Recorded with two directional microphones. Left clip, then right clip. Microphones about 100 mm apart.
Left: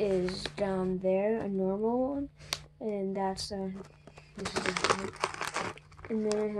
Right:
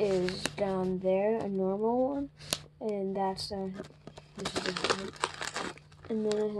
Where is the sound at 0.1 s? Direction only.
65° right (ahead or behind).